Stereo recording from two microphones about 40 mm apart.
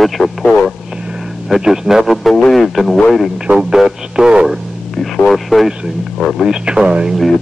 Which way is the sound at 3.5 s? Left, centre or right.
Right.